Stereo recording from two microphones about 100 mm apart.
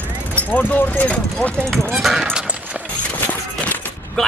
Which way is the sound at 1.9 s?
Centre (ahead or behind).